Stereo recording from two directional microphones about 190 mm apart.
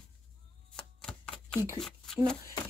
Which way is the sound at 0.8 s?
5° left (ahead or behind).